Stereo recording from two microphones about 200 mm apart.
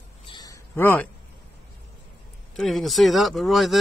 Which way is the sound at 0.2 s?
20° left (ahead or behind).